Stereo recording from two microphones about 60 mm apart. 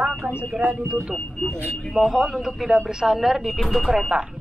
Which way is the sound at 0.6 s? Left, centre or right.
Right.